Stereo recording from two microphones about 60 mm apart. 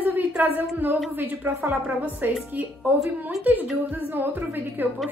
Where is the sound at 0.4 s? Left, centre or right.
Right.